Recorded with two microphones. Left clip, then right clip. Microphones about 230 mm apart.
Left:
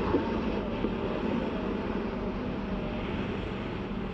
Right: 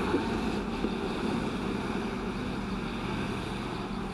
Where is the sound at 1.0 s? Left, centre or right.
Centre.